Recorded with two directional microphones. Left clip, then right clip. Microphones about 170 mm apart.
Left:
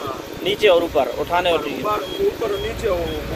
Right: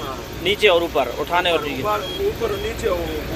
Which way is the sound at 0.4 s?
20° left (ahead or behind).